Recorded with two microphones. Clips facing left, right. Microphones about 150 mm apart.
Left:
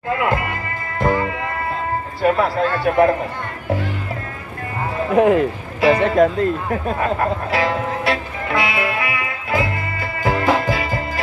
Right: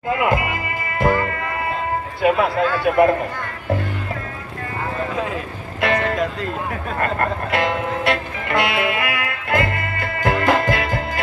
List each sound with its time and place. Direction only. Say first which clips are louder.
0.1 s speech: right 1 dB; 15° right (ahead or behind)
0.9 s music: even; centre (ahead or behind)
2.2 s a man's voice: even; centre (ahead or behind)
5.1 s speech: left 11 dB; 60° left (ahead or behind)
5.8 s music: left 5 dB; centre (ahead or behind)
6.1 s speech: left 8 dB; 50° left (ahead or behind)
7.0 s music: right 2 dB; centre (ahead or behind)